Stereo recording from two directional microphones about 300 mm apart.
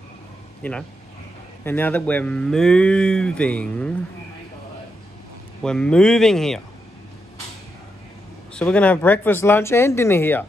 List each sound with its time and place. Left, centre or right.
0.6 s speech: centre
5.6 s speech: centre
8.5 s speech: centre